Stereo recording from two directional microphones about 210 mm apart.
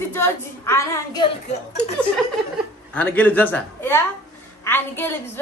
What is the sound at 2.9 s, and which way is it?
A woman's voice, 10° left (ahead or behind).